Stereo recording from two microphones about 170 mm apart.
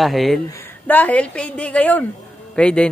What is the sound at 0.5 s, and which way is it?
Speech, 10° left (ahead or behind).